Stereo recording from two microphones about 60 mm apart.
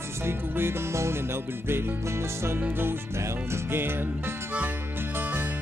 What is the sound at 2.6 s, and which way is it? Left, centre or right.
Music, right.